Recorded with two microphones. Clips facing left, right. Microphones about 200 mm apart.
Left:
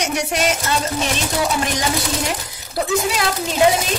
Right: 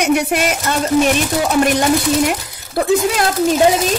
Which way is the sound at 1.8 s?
55° right (ahead or behind).